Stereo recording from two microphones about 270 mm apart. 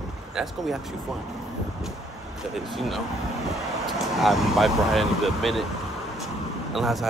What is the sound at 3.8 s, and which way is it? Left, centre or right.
Speech, centre.